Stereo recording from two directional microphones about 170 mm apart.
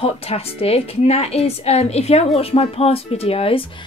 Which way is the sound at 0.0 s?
35° left (ahead or behind).